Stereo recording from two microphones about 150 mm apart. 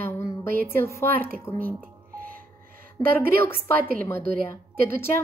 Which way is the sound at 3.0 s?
75° right (ahead or behind).